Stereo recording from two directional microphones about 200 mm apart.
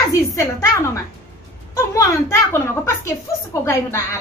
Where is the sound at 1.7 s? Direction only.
15° left (ahead or behind).